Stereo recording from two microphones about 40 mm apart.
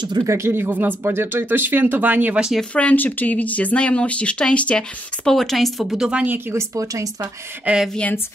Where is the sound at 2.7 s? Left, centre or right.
Left.